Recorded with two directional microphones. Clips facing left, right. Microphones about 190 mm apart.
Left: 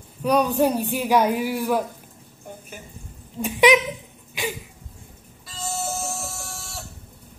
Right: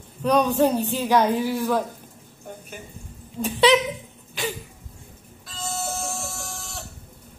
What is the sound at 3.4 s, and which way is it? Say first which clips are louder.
Speech: left 1 dB; 15° left (ahead or behind).